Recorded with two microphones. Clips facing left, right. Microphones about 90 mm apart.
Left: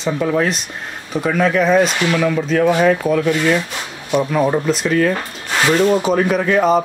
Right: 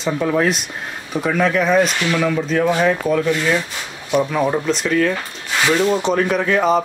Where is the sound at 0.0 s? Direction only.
Centre (ahead or behind).